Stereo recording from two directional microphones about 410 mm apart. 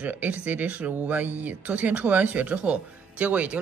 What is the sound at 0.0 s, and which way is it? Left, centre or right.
Speech, centre.